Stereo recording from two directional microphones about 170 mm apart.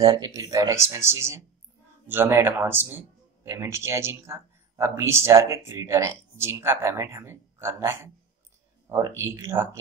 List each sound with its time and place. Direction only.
0.0 s speech: 25° right (ahead or behind)